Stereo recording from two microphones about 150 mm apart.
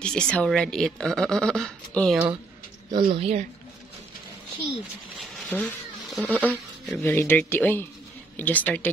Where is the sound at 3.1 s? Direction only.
45° right (ahead or behind).